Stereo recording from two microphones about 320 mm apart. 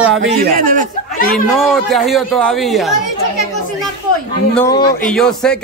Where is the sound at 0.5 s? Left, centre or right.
Right.